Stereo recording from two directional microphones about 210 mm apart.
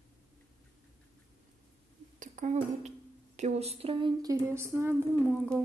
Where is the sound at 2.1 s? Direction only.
35° right (ahead or behind).